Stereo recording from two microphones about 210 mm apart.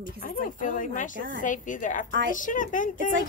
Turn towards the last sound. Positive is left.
turn(degrees=40)  # may be behind; listen again after turning